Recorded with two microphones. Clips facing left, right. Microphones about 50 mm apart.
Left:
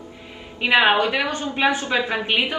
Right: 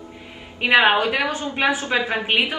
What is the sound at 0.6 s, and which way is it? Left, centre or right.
A woman's voice, centre.